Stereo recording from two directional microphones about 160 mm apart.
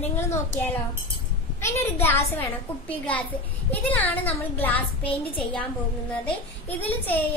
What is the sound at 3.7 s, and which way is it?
A woman's voice, 10° left (ahead or behind).